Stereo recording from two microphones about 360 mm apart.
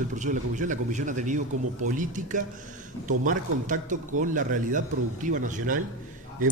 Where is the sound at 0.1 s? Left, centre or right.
Right.